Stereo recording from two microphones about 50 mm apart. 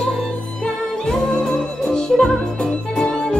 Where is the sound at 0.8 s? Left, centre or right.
Centre.